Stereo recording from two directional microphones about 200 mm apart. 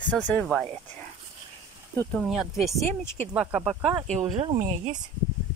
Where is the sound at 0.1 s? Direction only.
5° left (ahead or behind).